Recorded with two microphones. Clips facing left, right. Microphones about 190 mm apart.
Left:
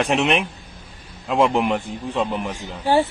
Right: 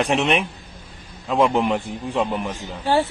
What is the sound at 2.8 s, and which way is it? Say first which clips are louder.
Speech: left 2 dB; 15° left (ahead or behind).